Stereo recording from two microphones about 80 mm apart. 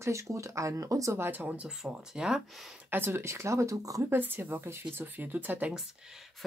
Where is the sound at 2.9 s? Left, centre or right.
Right.